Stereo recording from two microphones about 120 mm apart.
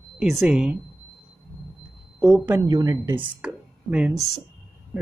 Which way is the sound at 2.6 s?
30° right (ahead or behind).